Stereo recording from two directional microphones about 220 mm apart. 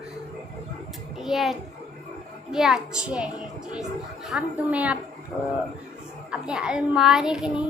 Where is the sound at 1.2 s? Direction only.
Centre (ahead or behind).